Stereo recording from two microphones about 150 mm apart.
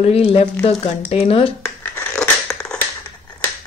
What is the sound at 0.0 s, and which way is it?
Speech, 40° left (ahead or behind).